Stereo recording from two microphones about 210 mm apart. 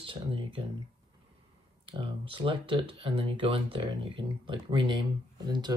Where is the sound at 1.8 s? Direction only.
25° right (ahead or behind).